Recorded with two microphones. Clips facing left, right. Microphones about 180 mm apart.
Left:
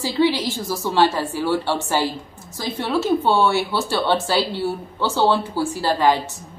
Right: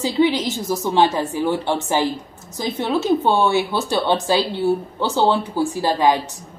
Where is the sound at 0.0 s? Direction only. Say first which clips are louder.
Right 1 dB; 20° right (ahead or behind).